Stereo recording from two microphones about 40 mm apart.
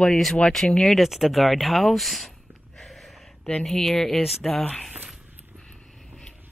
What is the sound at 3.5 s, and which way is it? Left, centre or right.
Speech, centre.